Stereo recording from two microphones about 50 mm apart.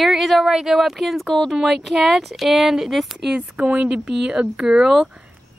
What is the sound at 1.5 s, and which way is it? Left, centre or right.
Speech, centre.